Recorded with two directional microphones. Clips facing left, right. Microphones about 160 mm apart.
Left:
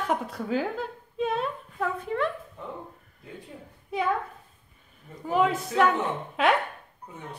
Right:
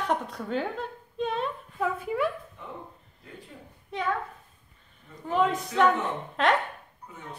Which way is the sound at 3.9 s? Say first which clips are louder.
Left 4 dB; 10° left (ahead or behind).